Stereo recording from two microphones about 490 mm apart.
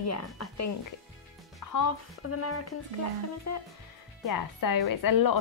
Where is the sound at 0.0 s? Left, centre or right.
Left.